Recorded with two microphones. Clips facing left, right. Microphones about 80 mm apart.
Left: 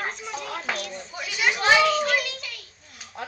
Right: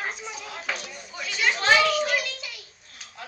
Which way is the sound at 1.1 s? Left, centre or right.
Centre.